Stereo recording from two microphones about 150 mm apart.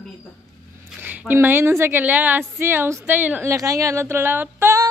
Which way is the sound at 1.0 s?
10° right (ahead or behind).